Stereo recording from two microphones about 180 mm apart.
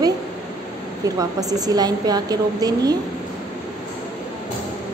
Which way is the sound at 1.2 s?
20° right (ahead or behind).